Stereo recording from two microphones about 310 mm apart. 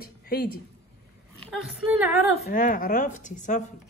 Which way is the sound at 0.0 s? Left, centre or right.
Left.